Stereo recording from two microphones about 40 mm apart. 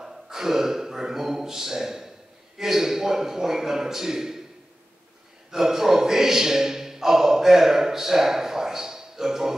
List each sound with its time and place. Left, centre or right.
0.0 s a man's voice: centre
5.5 s a man's voice: centre